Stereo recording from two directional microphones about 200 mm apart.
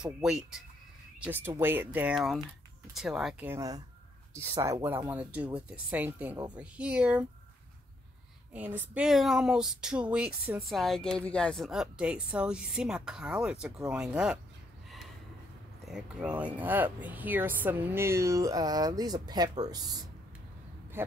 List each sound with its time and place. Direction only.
0.0 s speech: 5° right (ahead or behind)
8.5 s speech: 10° right (ahead or behind)
15.8 s speech: 5° right (ahead or behind); by 19.8 s 20° right (ahead or behind)